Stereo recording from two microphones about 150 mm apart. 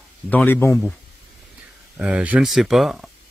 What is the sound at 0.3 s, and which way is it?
Speech, 10° left (ahead or behind).